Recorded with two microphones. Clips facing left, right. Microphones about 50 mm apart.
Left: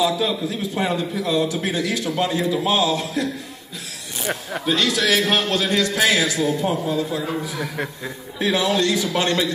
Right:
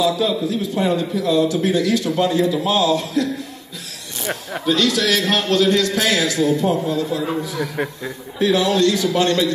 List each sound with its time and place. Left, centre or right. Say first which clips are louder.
0.0 s a man's voice: right 2 dB; centre
4.3 s speech: even; centre
4.6 s a man's voice: right 2 dB; centre
7.7 s speech: right 3 dB; centre
8.4 s a man's voice: right 3 dB; centre